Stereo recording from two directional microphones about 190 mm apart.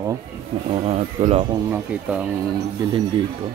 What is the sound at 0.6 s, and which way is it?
Speech, 30° right (ahead or behind).